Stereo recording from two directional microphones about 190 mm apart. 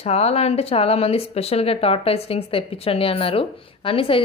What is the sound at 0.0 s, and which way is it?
Speech, 35° left (ahead or behind).